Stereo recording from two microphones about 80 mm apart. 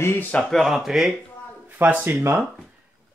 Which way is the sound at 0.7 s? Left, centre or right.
Centre.